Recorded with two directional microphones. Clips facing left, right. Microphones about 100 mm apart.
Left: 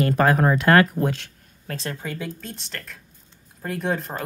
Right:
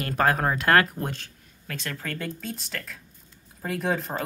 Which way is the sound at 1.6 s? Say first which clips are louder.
Left 4 dB; 35° left (ahead or behind).